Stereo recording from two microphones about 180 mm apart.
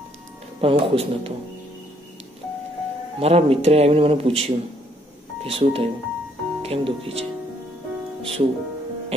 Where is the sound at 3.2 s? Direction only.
35° right (ahead or behind).